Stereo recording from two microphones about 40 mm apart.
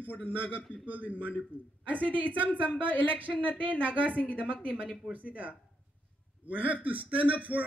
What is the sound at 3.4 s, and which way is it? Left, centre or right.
Speech, left.